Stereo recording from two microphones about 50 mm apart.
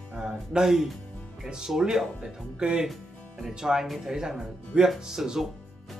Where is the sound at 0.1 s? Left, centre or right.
Centre.